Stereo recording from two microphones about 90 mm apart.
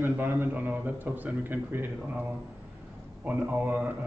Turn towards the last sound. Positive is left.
turn(degrees=-20)  # may be behind; listen again after turning